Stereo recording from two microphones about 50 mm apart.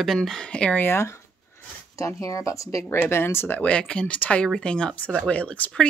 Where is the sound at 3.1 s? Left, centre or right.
Left.